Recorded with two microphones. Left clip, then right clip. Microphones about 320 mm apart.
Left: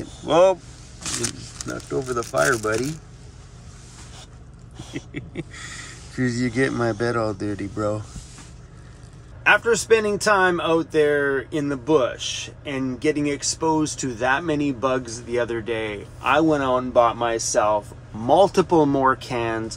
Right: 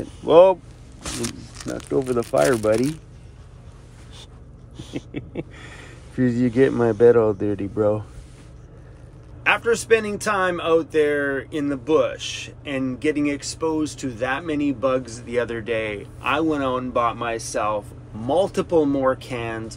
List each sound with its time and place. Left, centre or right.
1.0 s wild animals: right
1.7 s speech: centre
4.9 s speech: centre
9.4 s speech: centre